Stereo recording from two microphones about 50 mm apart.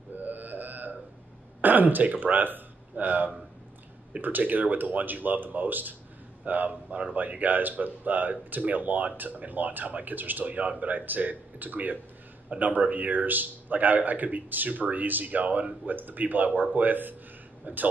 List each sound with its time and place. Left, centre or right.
0.1 s music: right
1.6 s speech: right